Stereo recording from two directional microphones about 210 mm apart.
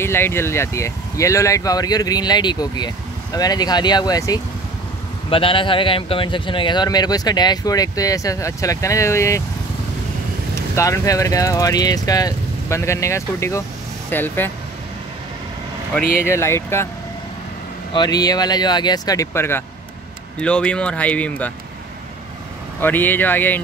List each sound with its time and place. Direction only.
0.0 s a man's voice: 10° left (ahead or behind)
10.5 s a man's voice: 15° left (ahead or behind)
16.2 s a man's voice: 10° left (ahead or behind)
17.9 s speech: 20° left (ahead or behind)
22.8 s a man's voice: 10° left (ahead or behind)